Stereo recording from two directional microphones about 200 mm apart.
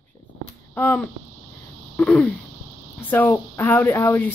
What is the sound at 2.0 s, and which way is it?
Speech, 5° left (ahead or behind).